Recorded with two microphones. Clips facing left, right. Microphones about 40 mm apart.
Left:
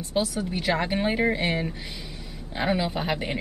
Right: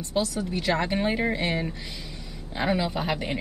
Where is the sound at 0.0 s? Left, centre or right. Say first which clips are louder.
Left 1 dB; centre.